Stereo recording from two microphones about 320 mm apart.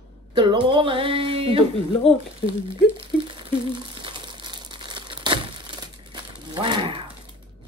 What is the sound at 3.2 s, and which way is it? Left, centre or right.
Crumpling, centre.